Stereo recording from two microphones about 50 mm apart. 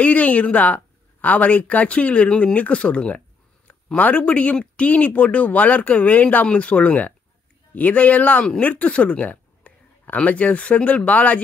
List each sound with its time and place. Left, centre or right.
0.0 s speech: left